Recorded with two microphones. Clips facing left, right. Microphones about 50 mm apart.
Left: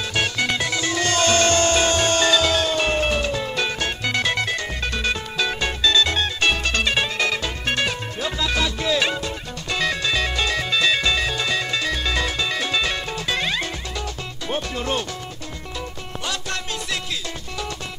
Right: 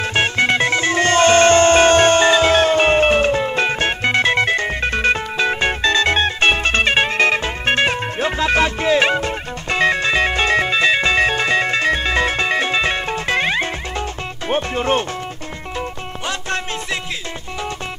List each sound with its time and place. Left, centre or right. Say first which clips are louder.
0.0 s music: right 6 dB; right
16.3 s music: right 5 dB; right